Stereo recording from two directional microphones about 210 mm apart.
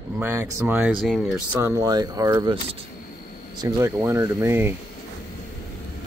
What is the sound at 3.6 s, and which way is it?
Speech, 15° right (ahead or behind).